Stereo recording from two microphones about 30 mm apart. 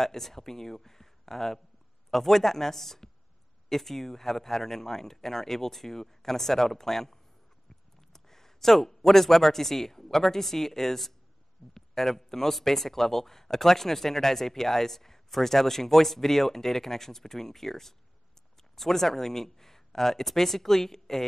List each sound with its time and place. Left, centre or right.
0.0 s speech: centre